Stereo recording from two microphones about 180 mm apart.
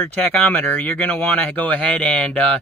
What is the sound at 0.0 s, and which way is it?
Speech, 5° left (ahead or behind).